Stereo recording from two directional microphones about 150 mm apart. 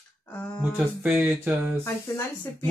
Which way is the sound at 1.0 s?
10° right (ahead or behind).